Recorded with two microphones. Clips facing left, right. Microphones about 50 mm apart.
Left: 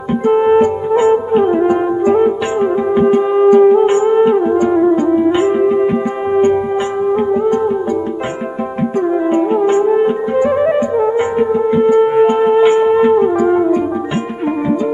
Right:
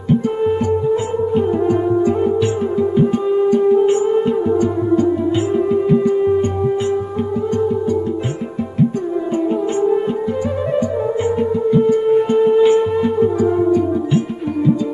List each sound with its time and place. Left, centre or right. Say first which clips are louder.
0.1 s music: left 6 dB; left
7.4 s music: left 4 dB; left
8.7 s music: left 3 dB; left